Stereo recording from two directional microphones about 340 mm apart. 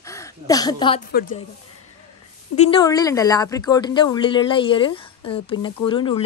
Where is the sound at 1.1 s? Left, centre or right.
Left.